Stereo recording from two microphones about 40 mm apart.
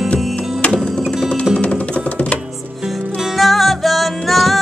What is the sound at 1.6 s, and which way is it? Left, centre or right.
Music, left.